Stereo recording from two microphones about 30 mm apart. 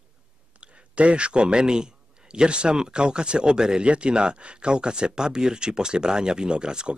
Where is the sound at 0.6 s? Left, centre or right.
Right.